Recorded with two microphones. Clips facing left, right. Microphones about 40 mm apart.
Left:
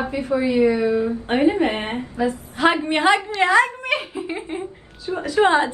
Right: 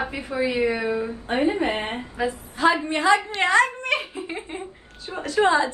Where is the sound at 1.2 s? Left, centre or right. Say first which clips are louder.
Left 3 dB; left.